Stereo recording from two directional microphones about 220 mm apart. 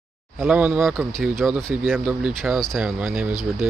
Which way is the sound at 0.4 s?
5° right (ahead or behind).